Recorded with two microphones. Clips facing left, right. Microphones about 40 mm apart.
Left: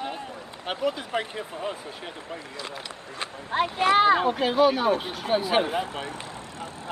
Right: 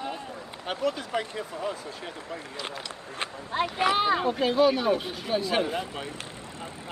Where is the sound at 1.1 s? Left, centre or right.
Left.